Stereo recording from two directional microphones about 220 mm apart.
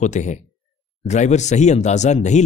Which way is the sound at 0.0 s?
35° left (ahead or behind).